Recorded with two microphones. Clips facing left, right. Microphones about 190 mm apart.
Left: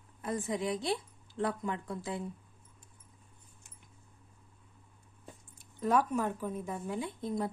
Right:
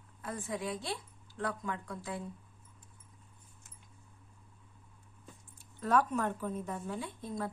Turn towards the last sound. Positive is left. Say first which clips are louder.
# left 4 dB
turn(degrees=20)  # may be behind; listen again after turning